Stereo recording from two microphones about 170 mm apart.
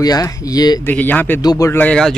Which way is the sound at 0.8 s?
10° left (ahead or behind).